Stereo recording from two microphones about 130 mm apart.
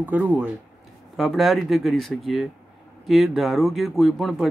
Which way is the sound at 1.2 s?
Centre (ahead or behind).